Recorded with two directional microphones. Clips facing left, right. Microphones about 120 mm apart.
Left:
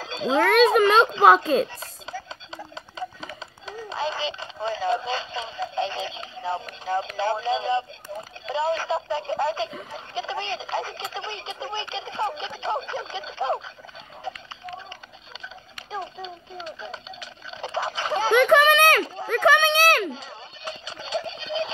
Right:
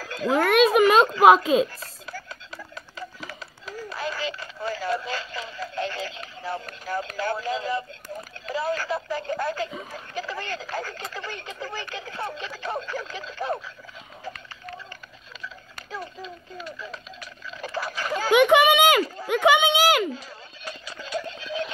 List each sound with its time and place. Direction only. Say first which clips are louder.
0.0 s a sound: even; 20° left (ahead or behind)
0.4 s a child's voice: left 1 dB; 5° right (ahead or behind)
0.7 s a sound: right 1 dB; 10° right (ahead or behind)
1.2 s a child's voice: right 2 dB; 10° right (ahead or behind)
1.8 s clip-clop: left 3 dB; 20° left (ahead or behind)
3.6 s speech: left 3 dB; 20° left (ahead or behind)
15.9 s speech: left 3 dB; 20° left (ahead or behind)
18.3 s a child's voice: right 1 dB; 10° right (ahead or behind)
20.2 s a sound: left 2 dB; 20° left (ahead or behind)